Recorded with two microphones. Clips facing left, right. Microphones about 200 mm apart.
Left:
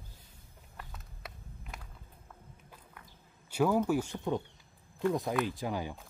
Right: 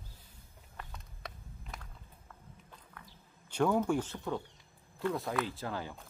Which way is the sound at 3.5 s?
5° left (ahead or behind).